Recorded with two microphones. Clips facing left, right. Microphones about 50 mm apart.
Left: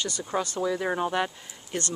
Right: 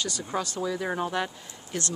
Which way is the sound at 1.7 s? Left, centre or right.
Left.